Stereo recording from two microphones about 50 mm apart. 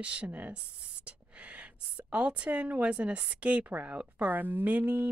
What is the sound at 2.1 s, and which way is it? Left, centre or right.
A woman's voice, right.